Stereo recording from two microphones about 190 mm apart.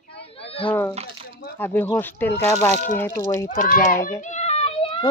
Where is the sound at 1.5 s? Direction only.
10° left (ahead or behind).